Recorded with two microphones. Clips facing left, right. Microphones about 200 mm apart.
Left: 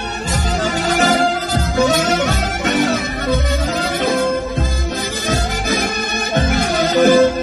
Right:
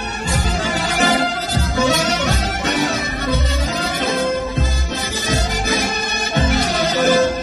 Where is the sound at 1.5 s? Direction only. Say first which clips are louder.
Left 1 dB; 50° left (ahead or behind).